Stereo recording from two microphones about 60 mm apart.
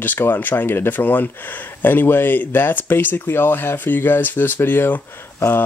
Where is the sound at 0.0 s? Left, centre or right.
Left.